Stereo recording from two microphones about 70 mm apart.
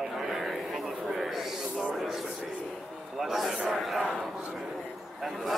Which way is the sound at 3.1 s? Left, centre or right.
Centre.